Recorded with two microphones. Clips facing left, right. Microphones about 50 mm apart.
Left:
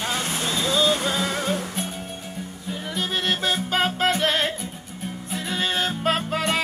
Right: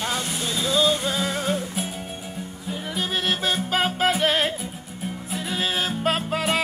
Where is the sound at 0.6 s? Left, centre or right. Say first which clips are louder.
Even; centre.